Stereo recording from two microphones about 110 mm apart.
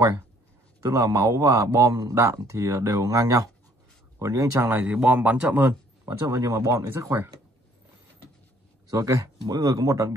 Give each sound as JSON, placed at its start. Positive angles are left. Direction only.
{"t": 0.7, "sound": "a man's voice", "side_deg": -30}
{"t": 6.0, "sound": "a man's voice", "side_deg": -30}
{"t": 8.9, "sound": "speech", "side_deg": -30}